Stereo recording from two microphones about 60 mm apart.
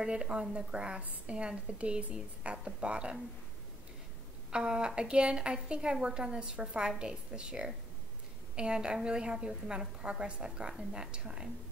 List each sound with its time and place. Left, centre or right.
0.0 s a woman's voice: centre
4.5 s a woman's voice: centre